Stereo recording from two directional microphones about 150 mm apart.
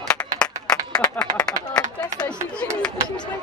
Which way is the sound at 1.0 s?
25° left (ahead or behind).